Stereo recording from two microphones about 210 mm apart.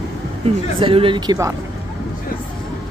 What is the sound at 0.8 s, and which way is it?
Speech, 25° right (ahead or behind).